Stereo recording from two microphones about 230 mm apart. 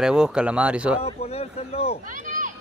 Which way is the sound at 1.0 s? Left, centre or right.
Left.